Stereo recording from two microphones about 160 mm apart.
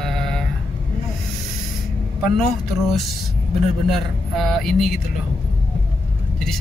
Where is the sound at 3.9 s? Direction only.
Centre (ahead or behind).